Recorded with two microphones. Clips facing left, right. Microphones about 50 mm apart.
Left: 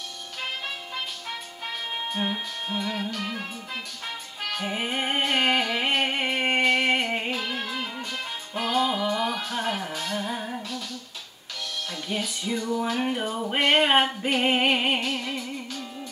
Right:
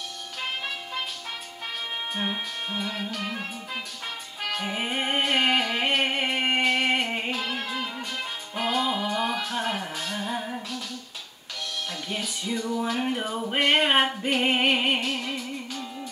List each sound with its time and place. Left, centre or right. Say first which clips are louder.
2.9 s music: left 1 dB; centre
11.9 s music: left 2 dB; centre
15.7 s music: right 1 dB; centre